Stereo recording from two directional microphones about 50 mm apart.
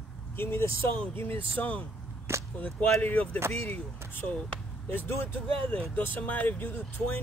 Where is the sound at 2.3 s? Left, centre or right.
Right.